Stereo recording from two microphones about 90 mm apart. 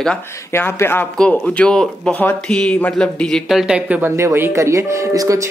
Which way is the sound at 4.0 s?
25° right (ahead or behind).